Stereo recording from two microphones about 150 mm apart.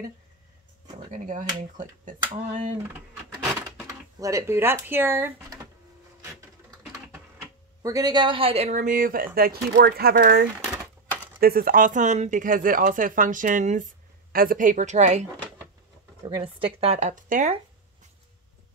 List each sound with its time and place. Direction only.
0.9 s speech: 55° right (ahead or behind)
4.2 s speech: 20° right (ahead or behind)
7.8 s speech: 25° right (ahead or behind); by 10.4 s 90° right
10.6 s typewriter: 10° left (ahead or behind)
11.3 s speech: 75° right (ahead or behind); by 13.8 s 55° right (ahead or behind)
14.3 s speech: 70° right (ahead or behind); by 15.2 s 50° right (ahead or behind)
16.2 s speech: 35° right (ahead or behind); by 17.6 s 60° right (ahead or behind)